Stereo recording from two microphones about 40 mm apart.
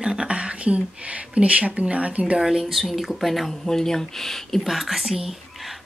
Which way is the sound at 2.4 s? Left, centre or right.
Centre.